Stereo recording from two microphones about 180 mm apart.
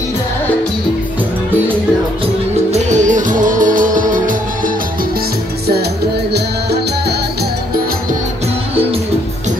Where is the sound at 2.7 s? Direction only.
40° right (ahead or behind).